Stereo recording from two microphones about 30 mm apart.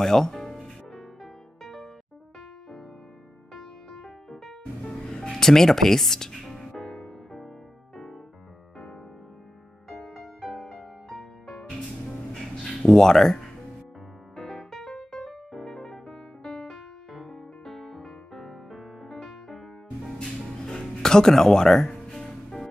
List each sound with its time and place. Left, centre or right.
0.0 s speech: centre
0.6 s music: centre
3.5 s music: centre
5.1 s speech: centre
6.5 s music: centre
9.8 s music: centre
12.9 s speech: centre
14.3 s music: centre
20.2 s music: left